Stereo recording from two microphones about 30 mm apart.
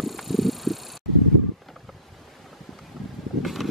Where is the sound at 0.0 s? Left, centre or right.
Centre.